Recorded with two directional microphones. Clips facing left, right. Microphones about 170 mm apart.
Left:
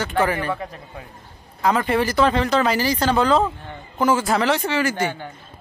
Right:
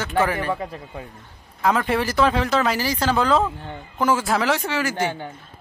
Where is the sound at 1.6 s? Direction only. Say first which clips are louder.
Left 1 dB; centre (ahead or behind).